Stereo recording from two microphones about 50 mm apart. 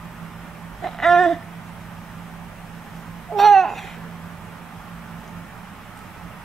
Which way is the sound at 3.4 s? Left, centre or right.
Centre.